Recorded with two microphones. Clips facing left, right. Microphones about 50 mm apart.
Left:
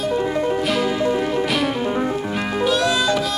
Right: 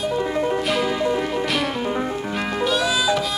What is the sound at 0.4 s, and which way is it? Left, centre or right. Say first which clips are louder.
Music: left 1 dB; centre.